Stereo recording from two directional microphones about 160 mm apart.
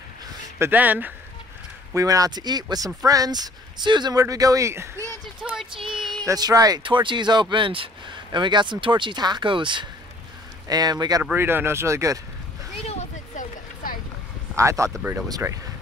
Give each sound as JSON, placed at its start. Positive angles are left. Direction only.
{"t": 0.6, "sound": "speech", "side_deg": -10}
{"t": 2.0, "sound": "speech", "side_deg": -20}
{"t": 5.4, "sound": "a sound", "side_deg": -5}
{"t": 5.7, "sound": "speech", "side_deg": -30}
{"t": 11.2, "sound": "speech", "side_deg": -15}
{"t": 12.8, "sound": "a sound", "side_deg": 50}
{"t": 14.6, "sound": "speech", "side_deg": -20}